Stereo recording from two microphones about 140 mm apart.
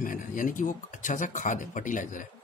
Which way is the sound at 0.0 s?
70° left (ahead or behind).